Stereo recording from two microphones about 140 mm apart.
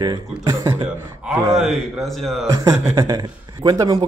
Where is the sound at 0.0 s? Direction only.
30° right (ahead or behind).